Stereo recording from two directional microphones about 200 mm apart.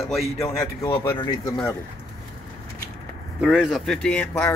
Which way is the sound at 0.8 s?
10° left (ahead or behind).